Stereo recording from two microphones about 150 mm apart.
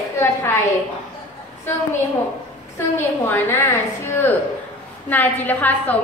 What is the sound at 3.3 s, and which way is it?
Speech, 15° left (ahead or behind).